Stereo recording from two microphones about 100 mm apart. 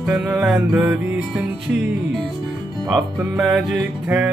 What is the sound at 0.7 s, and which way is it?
Music, 15° right (ahead or behind).